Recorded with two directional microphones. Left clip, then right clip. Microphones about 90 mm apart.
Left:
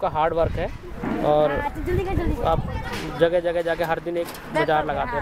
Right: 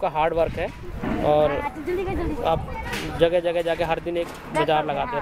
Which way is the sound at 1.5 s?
30° left (ahead or behind).